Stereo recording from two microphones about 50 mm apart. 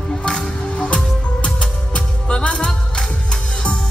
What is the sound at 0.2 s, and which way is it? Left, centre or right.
Music, centre.